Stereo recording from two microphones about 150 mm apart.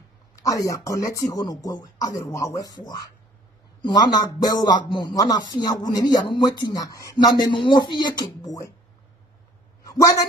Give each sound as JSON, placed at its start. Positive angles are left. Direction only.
{"t": 0.4, "sound": "speech", "side_deg": 20}
{"t": 9.8, "sound": "a woman's voice", "side_deg": 20}